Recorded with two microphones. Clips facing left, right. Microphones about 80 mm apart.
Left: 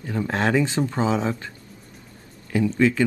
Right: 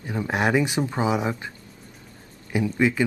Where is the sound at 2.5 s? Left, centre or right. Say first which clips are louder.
Left 2 dB; centre.